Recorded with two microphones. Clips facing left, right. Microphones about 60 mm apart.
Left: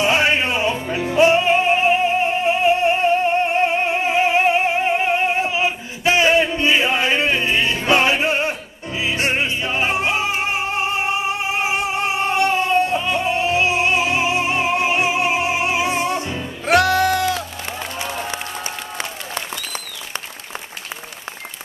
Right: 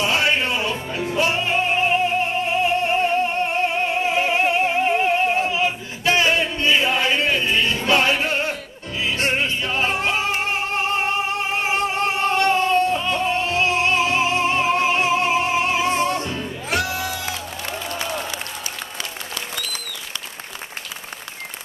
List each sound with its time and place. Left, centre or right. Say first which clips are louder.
0.0 s music: left 3 dB; left
16.6 s music: left 10 dB; left
18.9 s applause: left 3 dB; left